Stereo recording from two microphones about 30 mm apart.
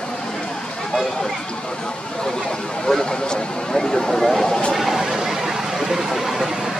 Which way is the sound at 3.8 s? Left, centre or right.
Centre.